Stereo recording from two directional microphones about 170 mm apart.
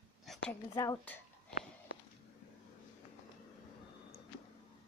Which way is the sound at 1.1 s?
10° left (ahead or behind).